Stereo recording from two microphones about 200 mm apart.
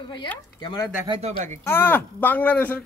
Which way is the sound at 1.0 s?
25° right (ahead or behind).